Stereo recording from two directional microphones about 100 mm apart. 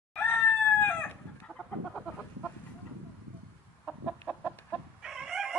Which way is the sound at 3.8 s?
10° right (ahead or behind).